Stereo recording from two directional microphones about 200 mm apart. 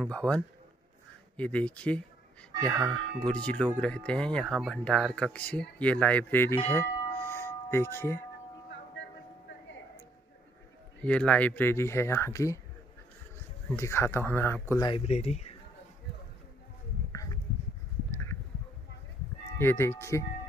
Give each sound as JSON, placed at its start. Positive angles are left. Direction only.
{"t": 0.0, "sound": "speech", "side_deg": 5}
{"t": 6.7, "sound": "tubular bells", "side_deg": 10}
{"t": 11.0, "sound": "speech", "side_deg": 5}
{"t": 13.7, "sound": "speech", "side_deg": 15}
{"t": 14.9, "sound": "speech", "side_deg": 30}
{"t": 19.6, "sound": "speech", "side_deg": 10}